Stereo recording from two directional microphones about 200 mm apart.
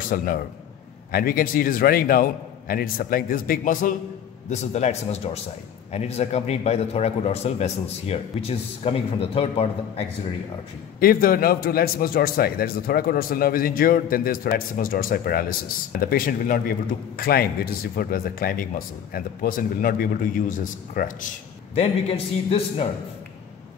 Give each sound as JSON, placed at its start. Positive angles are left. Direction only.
{"t": 0.1, "sound": "a man's voice", "side_deg": 45}
{"t": 11.0, "sound": "a man's voice", "side_deg": 45}
{"t": 21.7, "sound": "a man's voice", "side_deg": 30}